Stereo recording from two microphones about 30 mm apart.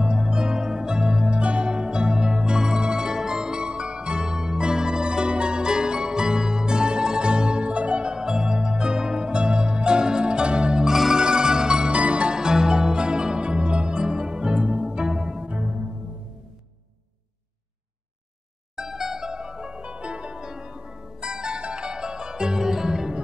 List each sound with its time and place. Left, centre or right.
0.0 s music: right
1.4 s music: right
4.2 s music: right
8.2 s music: right
9.3 s pizzicato: right
11.1 s music: right
12.0 s music: right
12.3 s music: right
18.8 s music: centre; by 20.3 s right
20.3 s music: right